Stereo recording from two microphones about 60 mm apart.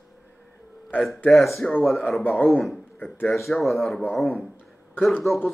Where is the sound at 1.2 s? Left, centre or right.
Centre.